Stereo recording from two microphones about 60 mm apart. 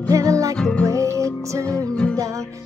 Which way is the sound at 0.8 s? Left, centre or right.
Right.